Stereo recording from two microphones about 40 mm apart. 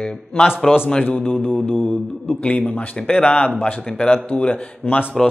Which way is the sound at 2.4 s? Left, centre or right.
Left.